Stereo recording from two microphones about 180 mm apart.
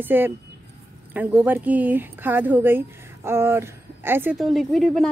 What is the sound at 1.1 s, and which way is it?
Speech, 10° right (ahead or behind).